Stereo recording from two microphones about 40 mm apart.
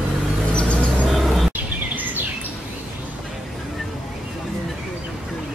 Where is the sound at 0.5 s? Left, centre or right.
Left.